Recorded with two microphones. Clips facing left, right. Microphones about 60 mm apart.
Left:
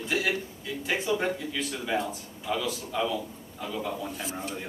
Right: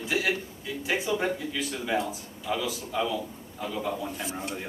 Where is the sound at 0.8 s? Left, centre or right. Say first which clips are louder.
Even; centre.